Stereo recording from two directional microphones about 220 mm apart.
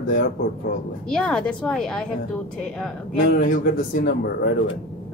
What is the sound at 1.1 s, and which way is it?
Speech, 5° left (ahead or behind).